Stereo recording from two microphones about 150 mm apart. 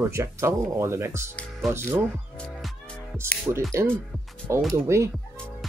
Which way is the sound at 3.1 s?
15° right (ahead or behind).